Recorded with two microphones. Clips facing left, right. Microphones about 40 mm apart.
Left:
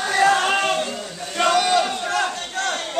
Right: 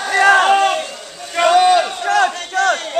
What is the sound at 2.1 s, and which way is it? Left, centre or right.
Battle cry, right.